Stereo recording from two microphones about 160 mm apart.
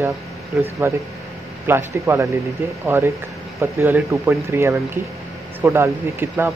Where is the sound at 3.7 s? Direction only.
15° right (ahead or behind).